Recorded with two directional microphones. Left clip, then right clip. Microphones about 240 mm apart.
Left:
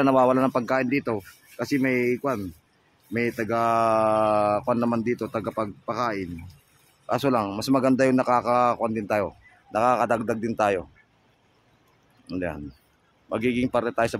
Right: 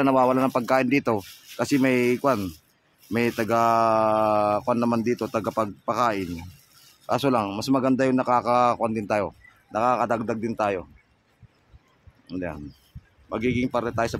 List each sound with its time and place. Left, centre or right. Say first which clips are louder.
0.0 s mantra: left 1 dB; centre
7.1 s speech: right 1 dB; centre
12.3 s speech: left 2 dB; centre